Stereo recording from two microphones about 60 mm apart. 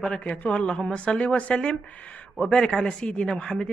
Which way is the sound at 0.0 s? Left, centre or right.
Centre.